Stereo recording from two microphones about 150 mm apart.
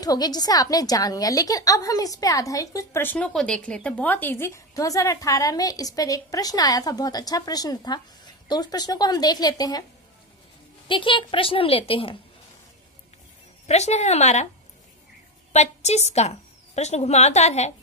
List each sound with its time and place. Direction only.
0.0 s a woman's voice: 25° left (ahead or behind)
10.9 s a woman's voice: 35° left (ahead or behind)
13.7 s a woman's voice: 45° left (ahead or behind)
15.5 s a woman's voice: 50° left (ahead or behind)